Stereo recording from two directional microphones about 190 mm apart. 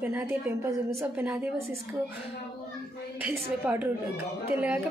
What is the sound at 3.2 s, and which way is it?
A woman's voice, 10° right (ahead or behind).